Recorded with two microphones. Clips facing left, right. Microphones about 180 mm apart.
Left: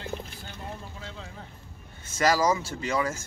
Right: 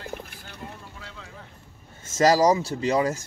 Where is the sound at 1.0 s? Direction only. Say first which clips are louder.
Left 3 dB; 25° left (ahead or behind).